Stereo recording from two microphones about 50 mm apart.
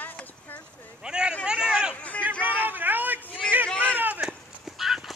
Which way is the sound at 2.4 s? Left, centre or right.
Right.